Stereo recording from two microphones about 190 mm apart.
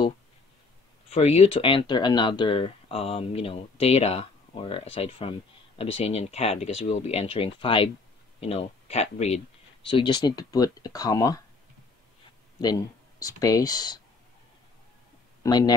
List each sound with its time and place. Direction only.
1.1 s speech: 35° left (ahead or behind); by 11.4 s 20° left (ahead or behind)
13.2 s speech: 20° left (ahead or behind)
15.4 s speech: 20° left (ahead or behind)